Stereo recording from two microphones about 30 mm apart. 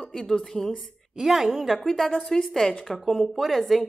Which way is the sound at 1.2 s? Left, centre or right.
Centre.